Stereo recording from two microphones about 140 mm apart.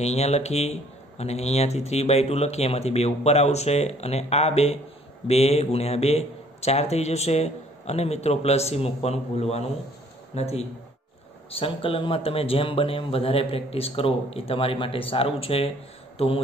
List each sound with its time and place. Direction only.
0.0 s speech: 50° left (ahead or behind)